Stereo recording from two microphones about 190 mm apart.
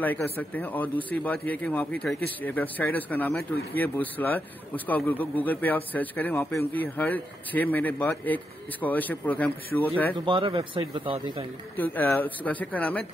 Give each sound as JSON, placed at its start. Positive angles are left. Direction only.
{"t": 0.0, "sound": "speech", "side_deg": 10}
{"t": 10.1, "sound": "speech", "side_deg": -25}
{"t": 11.7, "sound": "speech", "side_deg": 10}